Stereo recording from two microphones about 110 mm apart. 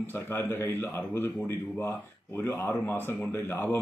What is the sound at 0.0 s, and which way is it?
Speech, 20° left (ahead or behind).